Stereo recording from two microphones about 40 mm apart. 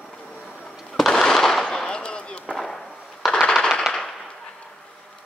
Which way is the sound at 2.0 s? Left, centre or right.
Left.